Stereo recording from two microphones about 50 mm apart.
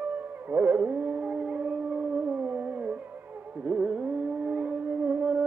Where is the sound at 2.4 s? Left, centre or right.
Right.